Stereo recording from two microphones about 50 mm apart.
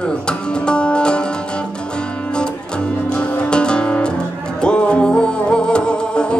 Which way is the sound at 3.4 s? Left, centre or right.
Centre.